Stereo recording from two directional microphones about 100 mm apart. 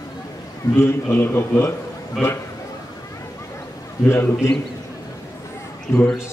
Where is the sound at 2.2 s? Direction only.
Centre (ahead or behind).